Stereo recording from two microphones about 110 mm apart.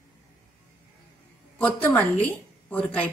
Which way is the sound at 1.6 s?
15° left (ahead or behind).